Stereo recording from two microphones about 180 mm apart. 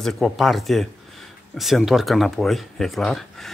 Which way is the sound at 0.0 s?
Centre (ahead or behind).